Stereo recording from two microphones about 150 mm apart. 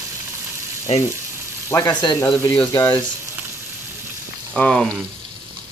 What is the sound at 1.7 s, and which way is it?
Speech, 25° left (ahead or behind).